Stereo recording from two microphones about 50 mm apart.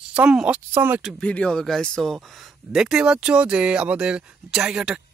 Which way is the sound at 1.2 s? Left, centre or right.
Left.